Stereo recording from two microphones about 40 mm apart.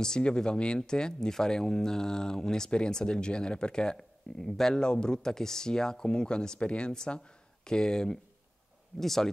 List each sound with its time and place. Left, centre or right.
0.0 s speech: centre
9.0 s speech: centre